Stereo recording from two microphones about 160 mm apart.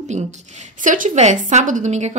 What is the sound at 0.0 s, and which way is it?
A woman's voice, 45° right (ahead or behind).